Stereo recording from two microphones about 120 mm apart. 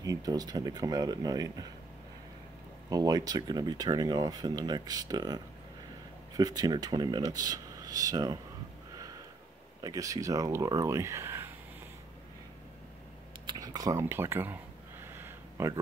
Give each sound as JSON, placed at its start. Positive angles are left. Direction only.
{"t": 0.0, "sound": "speech", "side_deg": -30}
{"t": 2.9, "sound": "speech", "side_deg": -30}
{"t": 9.8, "sound": "speech", "side_deg": -30}
{"t": 13.5, "sound": "a sound", "side_deg": -30}